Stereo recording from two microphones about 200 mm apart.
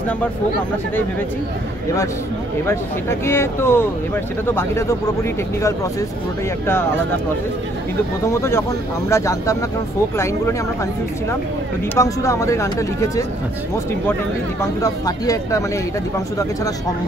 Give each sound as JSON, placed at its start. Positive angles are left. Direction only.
{"t": 2.6, "sound": "speech", "side_deg": 15}
{"t": 8.3, "sound": "speech", "side_deg": 15}
{"t": 11.9, "sound": "speech", "side_deg": 15}
{"t": 14.6, "sound": "speech", "side_deg": 15}